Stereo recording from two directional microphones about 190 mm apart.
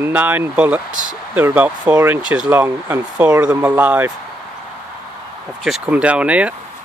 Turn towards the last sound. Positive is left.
turn(degrees=-5)  # may be behind; listen again after turning